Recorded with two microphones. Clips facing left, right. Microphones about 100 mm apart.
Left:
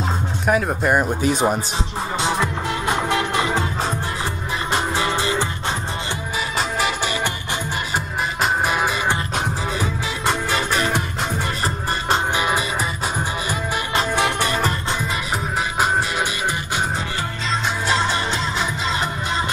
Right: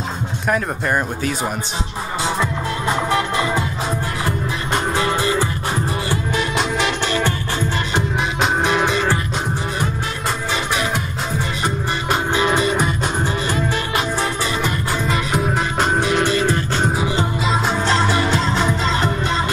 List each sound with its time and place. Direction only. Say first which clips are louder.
0.5 s speech: left 2 dB; 10° left (ahead or behind)
5.0 s music: right 2 dB; 20° left (ahead or behind)
6.3 s music: right 2 dB; 5° left (ahead or behind)
8.4 s music: right 2 dB; 5° left (ahead or behind)
10.5 s music: even; 45° left (ahead or behind)
12.4 s music: right 4 dB; 5° left (ahead or behind)
14.1 s music: left 1 dB; 65° left (ahead or behind)
15.3 s music: right 1 dB; centre (ahead or behind)
17.8 s music: right 2 dB; 20° left (ahead or behind)